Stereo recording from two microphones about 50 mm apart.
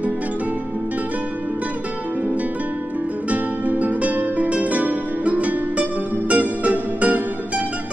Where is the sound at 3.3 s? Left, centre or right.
Right.